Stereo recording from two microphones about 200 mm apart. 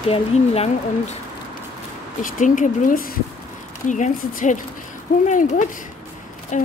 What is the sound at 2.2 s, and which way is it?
Speech, 40° left (ahead or behind).